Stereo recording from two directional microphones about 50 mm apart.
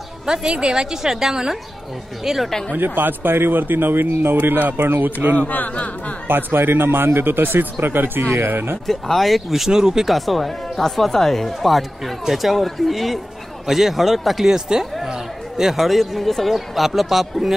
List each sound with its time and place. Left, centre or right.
0.3 s a woman's voice: centre
2.7 s speech: right
5.5 s a sound: left
6.2 s speech: right
8.8 s speech: centre
14.5 s a woman's voice: centre